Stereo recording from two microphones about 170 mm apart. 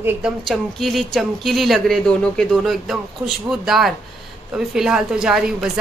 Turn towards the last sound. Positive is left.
turn(degrees=-5)  # may be behind; listen again after turning